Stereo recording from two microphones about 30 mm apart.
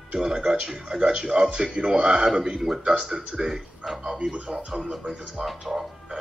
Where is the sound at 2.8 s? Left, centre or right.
Right.